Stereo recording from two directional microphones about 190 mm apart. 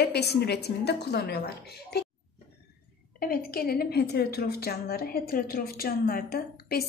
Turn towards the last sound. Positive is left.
turn(degrees=55)  # may be behind; listen again after turning